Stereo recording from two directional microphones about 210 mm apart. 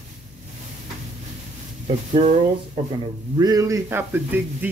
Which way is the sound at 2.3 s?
25° right (ahead or behind).